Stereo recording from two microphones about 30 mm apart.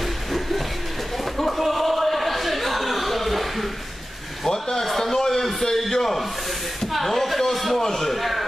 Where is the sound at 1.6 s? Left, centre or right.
Centre.